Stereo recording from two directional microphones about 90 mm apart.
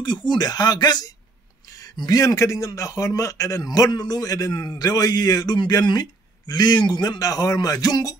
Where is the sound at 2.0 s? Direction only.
45° left (ahead or behind).